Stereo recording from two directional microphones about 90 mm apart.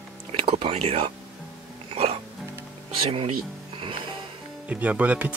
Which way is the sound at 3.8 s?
80° right.